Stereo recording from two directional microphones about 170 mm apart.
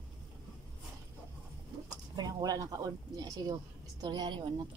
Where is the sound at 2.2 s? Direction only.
25° right (ahead or behind).